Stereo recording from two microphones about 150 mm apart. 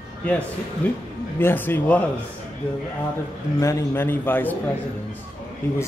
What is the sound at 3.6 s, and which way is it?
A man's voice, 20° left (ahead or behind).